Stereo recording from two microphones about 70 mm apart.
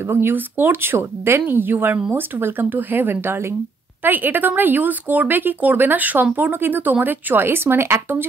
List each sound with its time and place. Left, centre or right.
0.1 s a woman's voice: right